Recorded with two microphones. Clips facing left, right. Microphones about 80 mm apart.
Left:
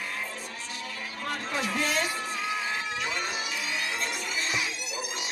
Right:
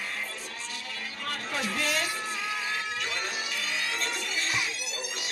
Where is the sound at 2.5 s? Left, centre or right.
Left.